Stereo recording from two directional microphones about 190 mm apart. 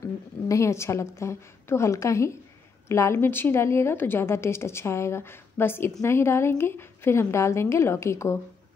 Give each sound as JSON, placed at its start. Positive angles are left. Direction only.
{"t": 0.5, "sound": "a woman's voice", "side_deg": 15}